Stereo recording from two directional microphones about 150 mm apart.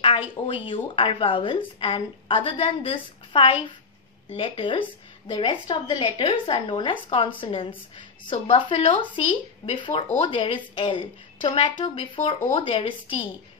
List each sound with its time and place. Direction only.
0.5 s a woman's voice: 35° left (ahead or behind)